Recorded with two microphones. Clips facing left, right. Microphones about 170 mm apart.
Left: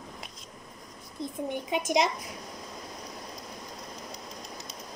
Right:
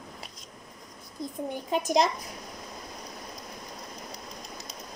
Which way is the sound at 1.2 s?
25° left (ahead or behind).